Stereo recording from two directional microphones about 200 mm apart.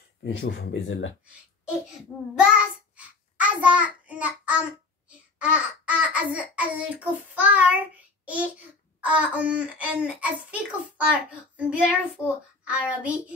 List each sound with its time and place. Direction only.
0.2 s speech: 65° left (ahead or behind)
2.3 s child singing: 5° right (ahead or behind)
3.3 s a child's voice: 5° right (ahead or behind)